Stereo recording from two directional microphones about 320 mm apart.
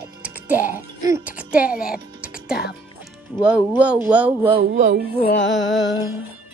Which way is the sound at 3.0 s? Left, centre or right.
Centre.